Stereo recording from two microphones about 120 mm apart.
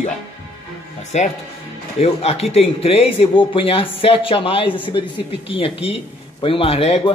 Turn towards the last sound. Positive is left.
turn(degrees=55)  # may be behind; listen again after turning